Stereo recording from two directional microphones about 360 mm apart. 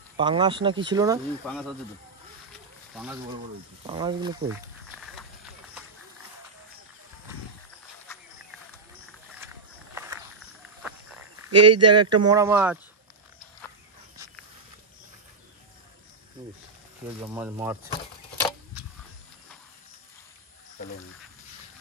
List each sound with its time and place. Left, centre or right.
0.2 s speech: centre
1.4 s speech: centre
3.8 s speech: centre
5.0 s run: centre
11.5 s speech: right
11.9 s speech: centre
17.2 s speech: centre